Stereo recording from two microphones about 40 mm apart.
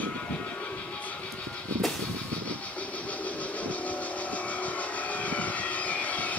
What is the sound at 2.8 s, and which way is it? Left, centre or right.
Vehicle, left.